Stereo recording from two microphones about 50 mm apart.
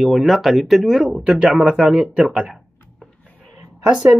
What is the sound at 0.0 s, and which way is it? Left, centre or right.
Speech, centre.